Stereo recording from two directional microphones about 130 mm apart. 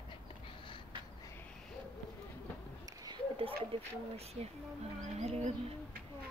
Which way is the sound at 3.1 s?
45° right (ahead or behind).